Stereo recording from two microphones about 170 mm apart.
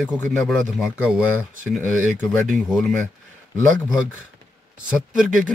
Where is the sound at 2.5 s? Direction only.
Centre (ahead or behind).